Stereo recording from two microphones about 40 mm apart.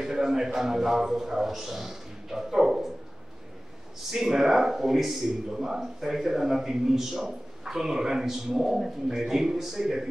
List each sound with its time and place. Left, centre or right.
0.0 s a man's voice: centre
4.1 s a man's voice: centre